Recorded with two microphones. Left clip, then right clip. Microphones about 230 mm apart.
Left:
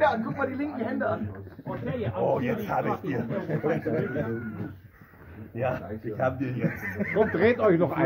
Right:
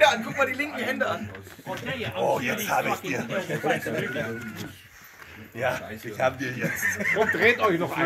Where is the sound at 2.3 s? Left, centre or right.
Centre.